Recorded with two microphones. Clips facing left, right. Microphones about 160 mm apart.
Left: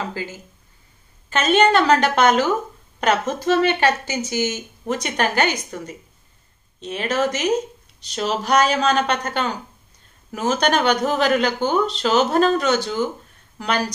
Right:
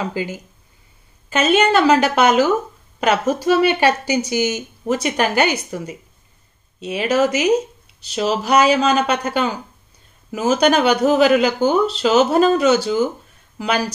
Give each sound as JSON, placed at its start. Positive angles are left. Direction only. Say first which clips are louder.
{"t": 0.1, "sound": "speech", "louder": "right 5 dB", "side_deg": -15}